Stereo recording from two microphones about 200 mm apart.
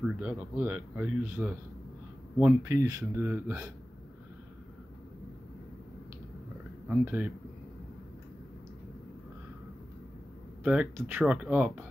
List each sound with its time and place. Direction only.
0.0 s speech: 5° right (ahead or behind)
2.7 s speech: 15° right (ahead or behind)
6.9 s speech: 10° right (ahead or behind)
10.6 s speech: 5° right (ahead or behind)